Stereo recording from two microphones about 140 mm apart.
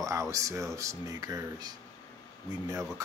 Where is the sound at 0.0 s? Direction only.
25° right (ahead or behind).